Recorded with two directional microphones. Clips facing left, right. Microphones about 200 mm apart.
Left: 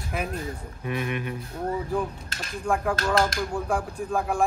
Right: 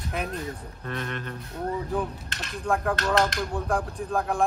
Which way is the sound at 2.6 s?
Centre (ahead or behind).